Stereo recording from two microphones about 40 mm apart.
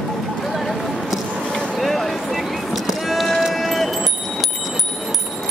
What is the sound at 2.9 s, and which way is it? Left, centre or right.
Run, centre.